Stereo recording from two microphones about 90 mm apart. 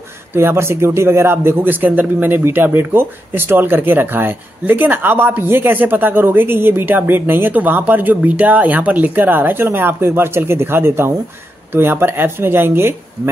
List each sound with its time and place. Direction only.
0.3 s speech: 25° right (ahead or behind)